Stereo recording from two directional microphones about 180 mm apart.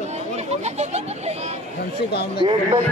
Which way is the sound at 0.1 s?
40° right (ahead or behind).